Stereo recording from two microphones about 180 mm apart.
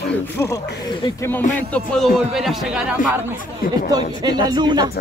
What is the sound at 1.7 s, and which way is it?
Speech, 5° left (ahead or behind).